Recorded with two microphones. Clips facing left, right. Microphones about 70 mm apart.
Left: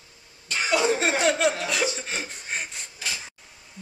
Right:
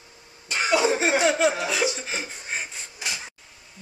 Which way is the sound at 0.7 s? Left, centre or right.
Centre.